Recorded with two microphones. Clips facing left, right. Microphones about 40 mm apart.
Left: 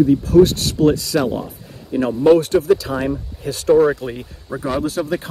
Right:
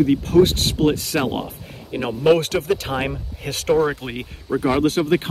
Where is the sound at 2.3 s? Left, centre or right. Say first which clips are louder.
Left 5 dB; right.